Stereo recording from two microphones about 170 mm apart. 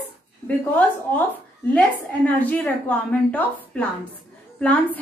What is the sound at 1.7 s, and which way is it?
A woman's voice, 10° left (ahead or behind).